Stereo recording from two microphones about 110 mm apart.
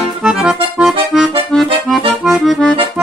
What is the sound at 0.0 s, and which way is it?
Accordion, 5° right (ahead or behind).